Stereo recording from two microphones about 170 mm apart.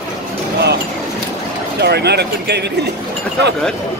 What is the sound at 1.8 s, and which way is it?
Speech, 75° right (ahead or behind).